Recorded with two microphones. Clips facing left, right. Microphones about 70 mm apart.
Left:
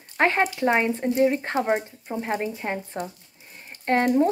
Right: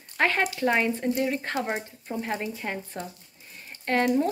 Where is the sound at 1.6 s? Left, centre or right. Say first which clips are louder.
Left 6 dB; centre.